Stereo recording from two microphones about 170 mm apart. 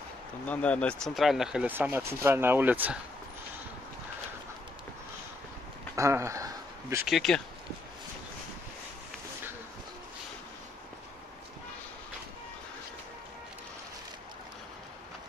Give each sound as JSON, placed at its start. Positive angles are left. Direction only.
{"t": 0.5, "sound": "speech", "side_deg": 10}
{"t": 5.9, "sound": "a sound", "side_deg": -15}
{"t": 7.1, "sound": "speech", "side_deg": 0}